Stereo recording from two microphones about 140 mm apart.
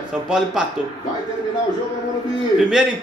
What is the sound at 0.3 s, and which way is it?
Speech, 5° right (ahead or behind).